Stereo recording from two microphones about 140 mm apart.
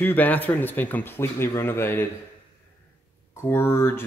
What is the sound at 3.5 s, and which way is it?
Speech, 15° left (ahead or behind).